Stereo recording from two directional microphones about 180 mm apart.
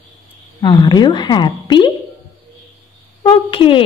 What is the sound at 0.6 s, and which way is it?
A woman's voice, 25° left (ahead or behind).